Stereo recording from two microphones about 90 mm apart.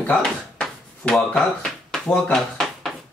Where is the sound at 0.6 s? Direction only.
5° left (ahead or behind).